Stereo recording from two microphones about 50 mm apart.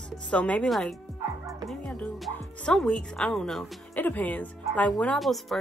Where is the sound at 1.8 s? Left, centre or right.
Left.